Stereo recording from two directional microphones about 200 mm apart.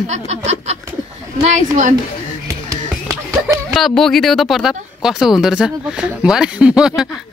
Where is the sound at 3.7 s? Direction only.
Centre (ahead or behind).